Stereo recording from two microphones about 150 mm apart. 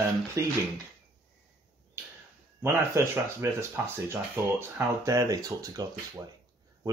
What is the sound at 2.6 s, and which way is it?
Speech, 15° right (ahead or behind).